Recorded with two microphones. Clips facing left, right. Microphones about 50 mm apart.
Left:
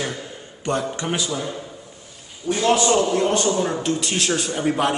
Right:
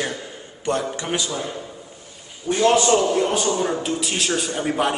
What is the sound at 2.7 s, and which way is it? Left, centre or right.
A man's voice, centre.